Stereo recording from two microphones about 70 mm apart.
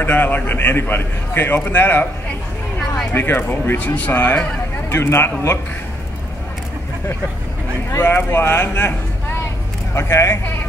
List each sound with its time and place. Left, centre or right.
0.0 s a man's voice: left
3.1 s speech: left
4.8 s speech: left
8.0 s a man's voice: left
9.9 s speech: left